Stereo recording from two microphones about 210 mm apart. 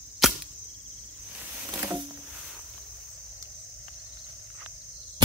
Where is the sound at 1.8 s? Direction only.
10° right (ahead or behind).